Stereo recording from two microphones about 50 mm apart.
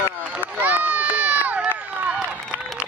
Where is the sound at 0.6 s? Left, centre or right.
Right.